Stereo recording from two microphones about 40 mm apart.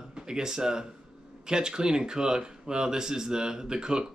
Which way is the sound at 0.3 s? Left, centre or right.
Centre.